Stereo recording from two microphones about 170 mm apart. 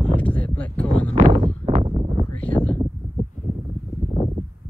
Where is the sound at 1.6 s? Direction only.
40° right (ahead or behind).